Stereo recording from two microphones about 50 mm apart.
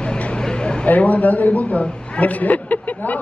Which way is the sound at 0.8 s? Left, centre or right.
Left.